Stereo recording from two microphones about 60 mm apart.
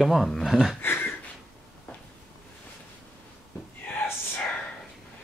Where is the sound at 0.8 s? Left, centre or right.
Left.